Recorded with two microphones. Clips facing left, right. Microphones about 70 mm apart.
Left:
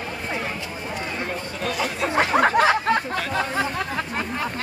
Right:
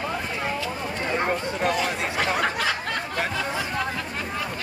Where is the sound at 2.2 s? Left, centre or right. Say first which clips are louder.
Left 8 dB; left.